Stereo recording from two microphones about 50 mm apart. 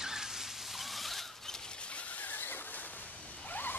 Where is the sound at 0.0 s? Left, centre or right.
Centre.